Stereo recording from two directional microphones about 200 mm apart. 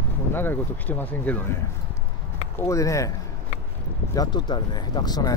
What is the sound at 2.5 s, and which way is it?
Speech, 15° left (ahead or behind).